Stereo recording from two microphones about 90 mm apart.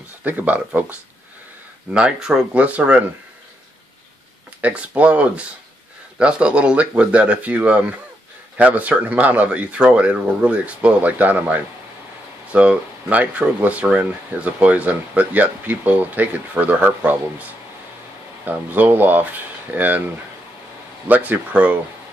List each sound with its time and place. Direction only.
0.2 s speech: 20° right (ahead or behind)
2.5 s speech: 15° right (ahead or behind)
4.6 s speech: 15° right (ahead or behind)
21.1 s speech: 20° right (ahead or behind)